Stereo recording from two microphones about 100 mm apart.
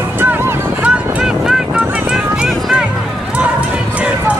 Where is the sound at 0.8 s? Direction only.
10° right (ahead or behind).